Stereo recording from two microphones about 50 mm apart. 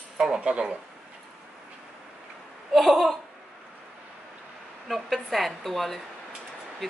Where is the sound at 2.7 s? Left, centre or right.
Centre.